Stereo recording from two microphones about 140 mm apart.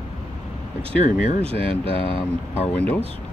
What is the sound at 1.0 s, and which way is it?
Speech, 60° left (ahead or behind).